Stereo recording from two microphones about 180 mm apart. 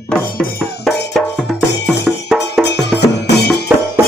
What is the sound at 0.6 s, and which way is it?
Music, centre (ahead or behind).